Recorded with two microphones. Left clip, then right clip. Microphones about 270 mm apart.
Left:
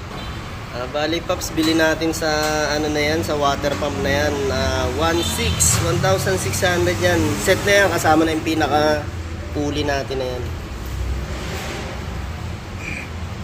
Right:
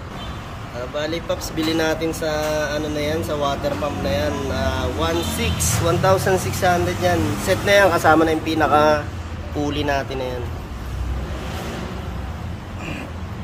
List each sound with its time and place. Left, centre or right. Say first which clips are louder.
0.9 s speech: left 3 dB; centre
6.0 s speech: right 2 dB; centre